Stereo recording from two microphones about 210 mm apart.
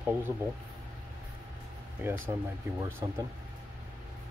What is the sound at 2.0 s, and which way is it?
Speech, 10° right (ahead or behind).